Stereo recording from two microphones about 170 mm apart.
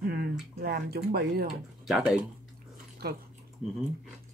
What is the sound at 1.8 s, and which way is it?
Speech, centre (ahead or behind).